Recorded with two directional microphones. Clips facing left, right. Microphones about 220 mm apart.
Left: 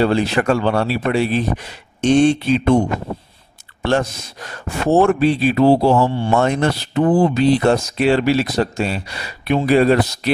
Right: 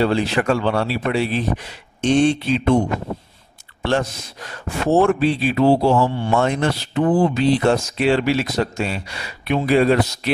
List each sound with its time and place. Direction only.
0.0 s speech: 45° left (ahead or behind)
3.8 s speech: 45° left (ahead or behind)